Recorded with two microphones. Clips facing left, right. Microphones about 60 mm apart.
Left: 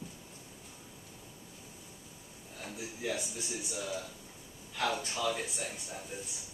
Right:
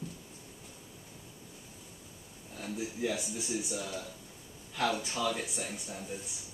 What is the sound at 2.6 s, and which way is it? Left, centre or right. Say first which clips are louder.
Speech: right 5 dB; centre.